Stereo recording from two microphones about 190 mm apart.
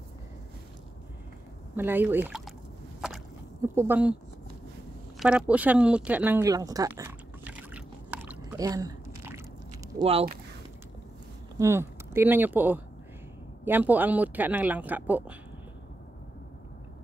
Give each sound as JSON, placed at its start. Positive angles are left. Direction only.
{"t": 1.8, "sound": "speech", "side_deg": -10}
{"t": 3.6, "sound": "speech", "side_deg": -10}
{"t": 5.2, "sound": "speech", "side_deg": -5}
{"t": 6.9, "sound": "a sound", "side_deg": -10}
{"t": 9.9, "sound": "speech", "side_deg": -30}
{"t": 11.5, "sound": "speech", "side_deg": -15}